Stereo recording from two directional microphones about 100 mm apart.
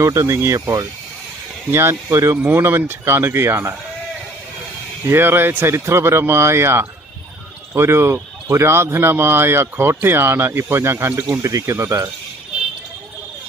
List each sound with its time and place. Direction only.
0.0 s speech: 30° right (ahead or behind)
5.0 s speech: 20° right (ahead or behind)
11.4 s speech: 30° right (ahead or behind)